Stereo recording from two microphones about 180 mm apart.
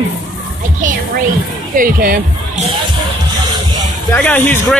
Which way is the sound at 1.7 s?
55° right (ahead or behind).